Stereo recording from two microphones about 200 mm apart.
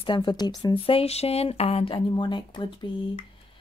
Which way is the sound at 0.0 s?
25° left (ahead or behind).